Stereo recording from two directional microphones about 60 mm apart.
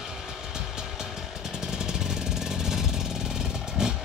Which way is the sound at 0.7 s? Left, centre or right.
Centre.